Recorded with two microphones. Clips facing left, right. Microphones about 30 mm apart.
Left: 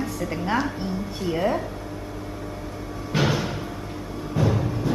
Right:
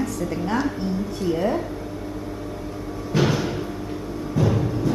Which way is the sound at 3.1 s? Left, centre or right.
Centre.